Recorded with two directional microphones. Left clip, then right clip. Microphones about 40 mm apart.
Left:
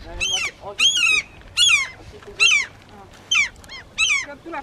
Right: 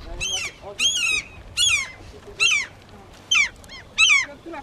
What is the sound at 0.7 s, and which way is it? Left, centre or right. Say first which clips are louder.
Cat: left 4 dB; left.